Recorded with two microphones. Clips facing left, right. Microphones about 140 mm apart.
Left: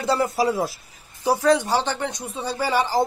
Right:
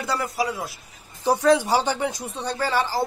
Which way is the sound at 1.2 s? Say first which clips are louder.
Even; 5° left (ahead or behind).